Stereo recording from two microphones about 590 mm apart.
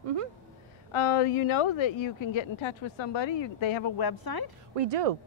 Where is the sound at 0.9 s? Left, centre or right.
Left.